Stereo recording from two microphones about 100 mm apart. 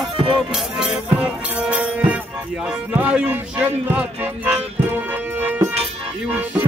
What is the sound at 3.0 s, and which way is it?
Speech, 15° right (ahead or behind).